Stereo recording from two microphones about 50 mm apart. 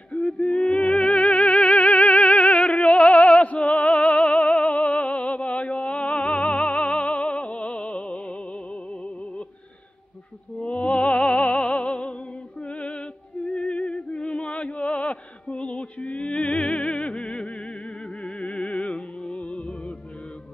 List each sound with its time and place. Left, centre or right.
0.1 s music: left
10.6 s opera: left